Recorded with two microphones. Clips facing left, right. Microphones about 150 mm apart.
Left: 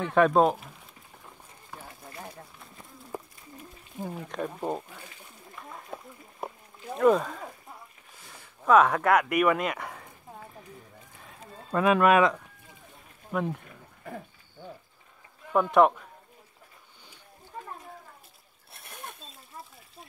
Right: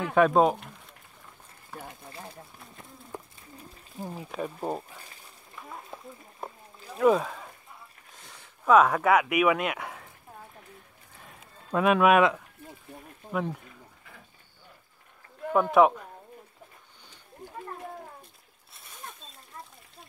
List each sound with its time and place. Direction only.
0.0 s speech: centre (ahead or behind)
3.1 s a sound: 5° left (ahead or behind)
4.3 s speech: 5° right (ahead or behind)
7.0 s speech: 5° right (ahead or behind)
8.6 s speech: centre (ahead or behind)
11.1 s a sound: centre (ahead or behind)
13.3 s speech: centre (ahead or behind)
14.0 s a sound: 45° left (ahead or behind)
15.5 s speech: centre (ahead or behind)
18.7 s splash: 65° left (ahead or behind)